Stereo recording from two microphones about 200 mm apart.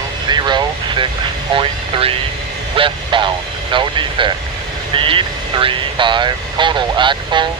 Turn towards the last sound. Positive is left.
turn(degrees=-25)  # may be behind; listen again after turning